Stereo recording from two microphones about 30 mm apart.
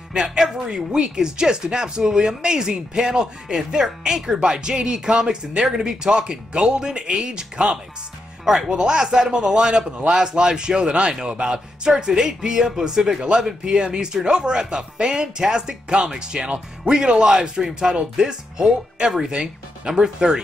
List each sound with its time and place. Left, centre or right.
0.4 s a man's voice: right
8.5 s a man's voice: right
13.2 s a man's voice: right